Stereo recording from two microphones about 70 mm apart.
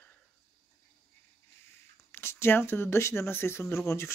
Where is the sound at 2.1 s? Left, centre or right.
Left.